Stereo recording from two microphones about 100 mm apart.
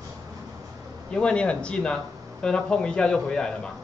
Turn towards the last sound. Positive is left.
turn(degrees=10)  # may be behind; listen again after turning